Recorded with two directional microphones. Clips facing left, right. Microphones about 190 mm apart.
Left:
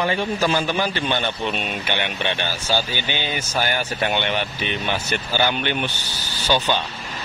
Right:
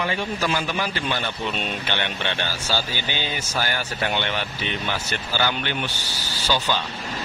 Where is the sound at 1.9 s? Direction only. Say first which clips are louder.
Left 5 dB; 15° left (ahead or behind).